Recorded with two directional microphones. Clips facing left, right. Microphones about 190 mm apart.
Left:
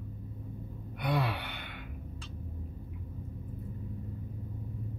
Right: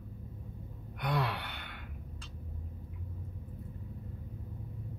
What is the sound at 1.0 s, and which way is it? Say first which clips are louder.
Gasp: left 2 dB; 10° left (ahead or behind).